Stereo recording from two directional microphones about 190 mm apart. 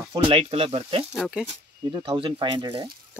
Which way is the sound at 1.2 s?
5° right (ahead or behind).